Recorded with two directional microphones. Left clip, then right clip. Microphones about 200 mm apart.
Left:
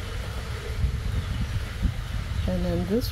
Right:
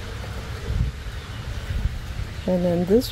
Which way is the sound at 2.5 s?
40° right (ahead or behind).